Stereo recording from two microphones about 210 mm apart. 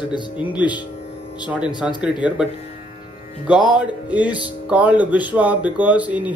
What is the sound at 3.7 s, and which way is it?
Speech, 5° right (ahead or behind).